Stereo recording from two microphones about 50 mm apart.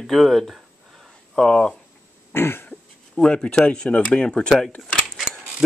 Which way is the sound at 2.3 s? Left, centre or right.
Left.